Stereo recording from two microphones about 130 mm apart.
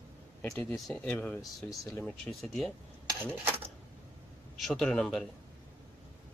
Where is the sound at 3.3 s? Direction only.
15° right (ahead or behind).